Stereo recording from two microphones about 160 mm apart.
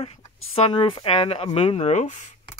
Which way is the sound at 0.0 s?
40° left (ahead or behind).